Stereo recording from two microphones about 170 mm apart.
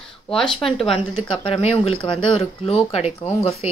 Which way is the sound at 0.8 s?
30° left (ahead or behind).